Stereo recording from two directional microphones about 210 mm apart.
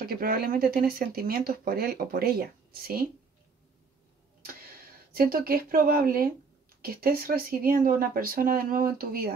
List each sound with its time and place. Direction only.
0.0 s speech: 45° right (ahead or behind)
5.1 s speech: 45° right (ahead or behind)